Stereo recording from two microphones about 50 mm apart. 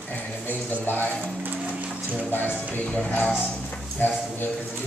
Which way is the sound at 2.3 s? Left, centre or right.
Left.